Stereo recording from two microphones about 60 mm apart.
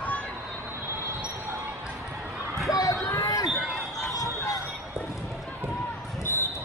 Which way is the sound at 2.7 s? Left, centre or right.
Left.